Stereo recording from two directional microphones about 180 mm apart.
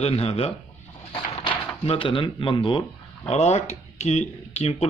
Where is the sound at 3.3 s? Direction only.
40° left (ahead or behind).